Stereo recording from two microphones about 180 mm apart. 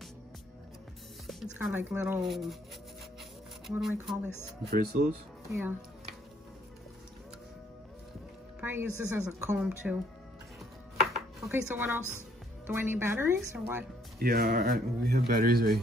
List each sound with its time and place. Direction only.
1.2 s music: centre (ahead or behind)
1.7 s a woman's voice: 10° right (ahead or behind)
3.6 s speech: centre (ahead or behind)
4.6 s speech: 55° right (ahead or behind)
5.5 s a woman's voice: 10° right (ahead or behind)
8.5 s a woman's voice: 10° right (ahead or behind)
11.1 s chopping: centre (ahead or behind)
12.6 s a woman's voice: 10° right (ahead or behind)
14.2 s speech: 55° right (ahead or behind)